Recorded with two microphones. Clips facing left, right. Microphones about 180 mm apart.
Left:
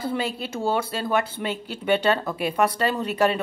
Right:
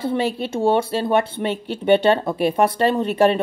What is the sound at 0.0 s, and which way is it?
Speech, 25° right (ahead or behind).